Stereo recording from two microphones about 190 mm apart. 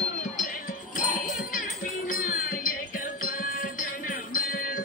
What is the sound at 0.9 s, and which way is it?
Music, 45° left (ahead or behind).